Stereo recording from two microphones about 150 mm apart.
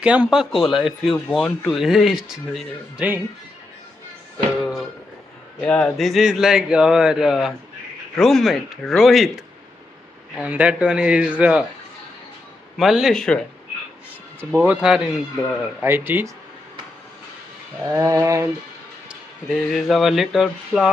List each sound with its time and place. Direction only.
0.0 s speech: 5° right (ahead or behind)
5.6 s speech: 10° left (ahead or behind)
5.9 s a man's voice: centre (ahead or behind)
12.7 s speech: centre (ahead or behind)
14.4 s a man's voice: 15° right (ahead or behind)
17.8 s a sound: 25° right (ahead or behind)
19.0 s speech: centre (ahead or behind)